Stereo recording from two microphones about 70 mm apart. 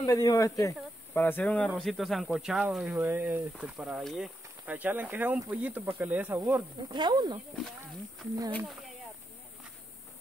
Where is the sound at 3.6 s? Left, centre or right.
Centre.